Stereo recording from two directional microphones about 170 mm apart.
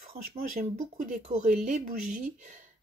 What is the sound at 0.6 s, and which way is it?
Speech, 55° right (ahead or behind).